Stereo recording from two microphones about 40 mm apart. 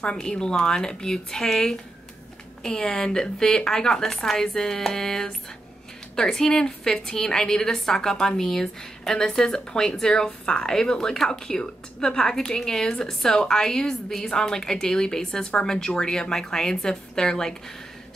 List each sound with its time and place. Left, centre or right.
0.0 s a woman's voice: centre